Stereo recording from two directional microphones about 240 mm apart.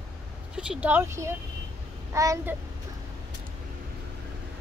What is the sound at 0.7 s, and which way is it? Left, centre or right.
Speech, centre.